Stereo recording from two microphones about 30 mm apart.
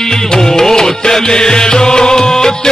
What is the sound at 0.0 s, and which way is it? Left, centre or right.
Music, centre.